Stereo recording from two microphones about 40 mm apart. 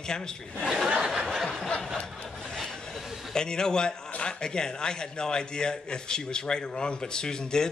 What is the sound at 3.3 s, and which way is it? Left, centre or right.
A man's voice, centre.